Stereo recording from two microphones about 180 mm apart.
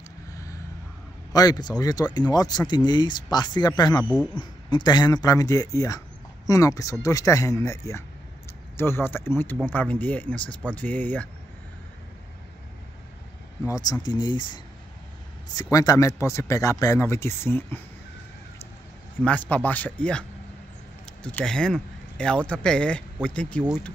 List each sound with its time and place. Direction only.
0.3 s a sound: 20° left (ahead or behind)
1.3 s a man's voice: 20° left (ahead or behind)
13.7 s a man's voice: 20° left (ahead or behind)
19.2 s a man's voice: 10° left (ahead or behind)